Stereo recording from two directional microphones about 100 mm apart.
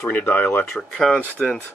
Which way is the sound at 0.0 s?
15° left (ahead or behind).